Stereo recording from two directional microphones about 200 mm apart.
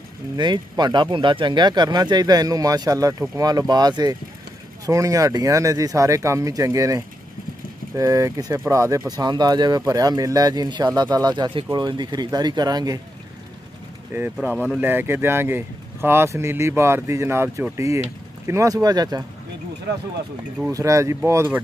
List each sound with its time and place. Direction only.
0.4 s speech: 20° right (ahead or behind)
14.1 s speech: 10° right (ahead or behind)
20.7 s speech: 15° right (ahead or behind)